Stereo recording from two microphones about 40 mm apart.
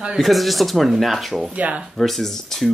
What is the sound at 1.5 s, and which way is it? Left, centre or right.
Speech, right.